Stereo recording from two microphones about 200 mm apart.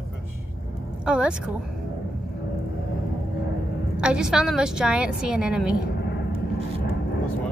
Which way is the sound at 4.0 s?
5° right (ahead or behind).